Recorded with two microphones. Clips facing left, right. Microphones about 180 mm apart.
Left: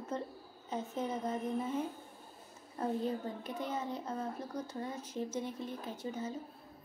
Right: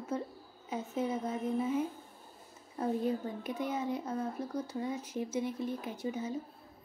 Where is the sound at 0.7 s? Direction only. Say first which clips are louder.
Right 3 dB; 10° right (ahead or behind).